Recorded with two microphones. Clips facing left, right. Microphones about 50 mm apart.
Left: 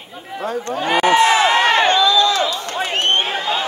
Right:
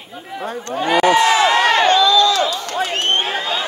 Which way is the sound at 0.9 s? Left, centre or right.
Left.